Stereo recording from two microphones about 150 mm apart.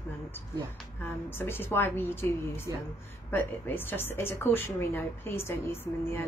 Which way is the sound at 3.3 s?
15° left (ahead or behind).